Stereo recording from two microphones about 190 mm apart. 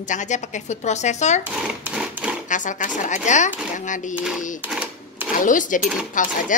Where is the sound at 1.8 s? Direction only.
10° right (ahead or behind).